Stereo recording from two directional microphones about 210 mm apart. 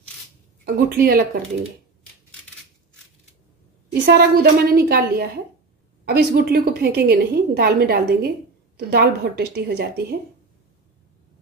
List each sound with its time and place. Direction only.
0.8 s a woman's voice: 45° right (ahead or behind)
3.9 s a woman's voice: 50° right (ahead or behind)